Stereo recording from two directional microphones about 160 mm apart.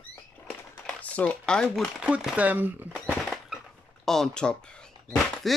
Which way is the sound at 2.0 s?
5° right (ahead or behind).